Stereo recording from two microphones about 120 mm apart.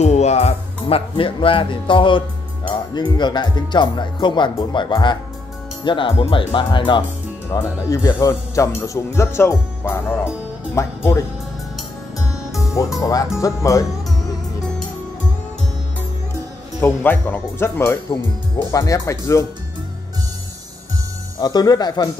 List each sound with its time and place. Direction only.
0.0 s speech: 65° left (ahead or behind); by 10.9 s 20° left (ahead or behind)
12.4 s music: centre (ahead or behind)
13.0 s speech: 30° left (ahead or behind)
16.8 s speech: 15° left (ahead or behind)
21.4 s speech: 35° left (ahead or behind)